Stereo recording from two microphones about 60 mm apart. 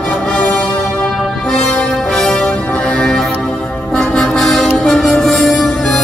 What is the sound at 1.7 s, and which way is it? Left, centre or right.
Music, centre.